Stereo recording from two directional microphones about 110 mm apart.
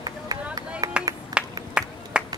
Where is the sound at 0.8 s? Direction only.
35° right (ahead or behind).